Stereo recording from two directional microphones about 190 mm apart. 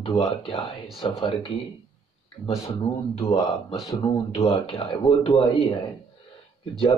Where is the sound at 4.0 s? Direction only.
25° left (ahead or behind).